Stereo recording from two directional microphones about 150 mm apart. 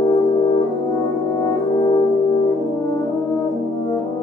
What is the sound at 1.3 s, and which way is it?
Brass instrument, 25° left (ahead or behind).